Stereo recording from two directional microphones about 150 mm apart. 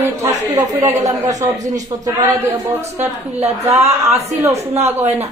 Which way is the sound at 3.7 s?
45° right (ahead or behind).